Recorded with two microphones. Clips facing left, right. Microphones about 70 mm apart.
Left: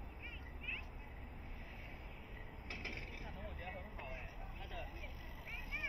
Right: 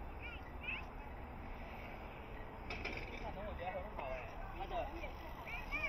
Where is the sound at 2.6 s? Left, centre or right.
Right.